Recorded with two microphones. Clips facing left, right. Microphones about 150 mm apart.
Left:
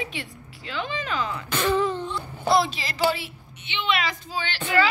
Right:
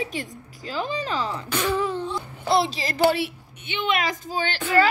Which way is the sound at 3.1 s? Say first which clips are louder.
Right 10 dB; 65° right (ahead or behind).